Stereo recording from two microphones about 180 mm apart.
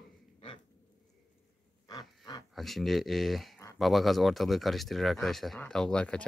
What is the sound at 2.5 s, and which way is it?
Speech, centre (ahead or behind).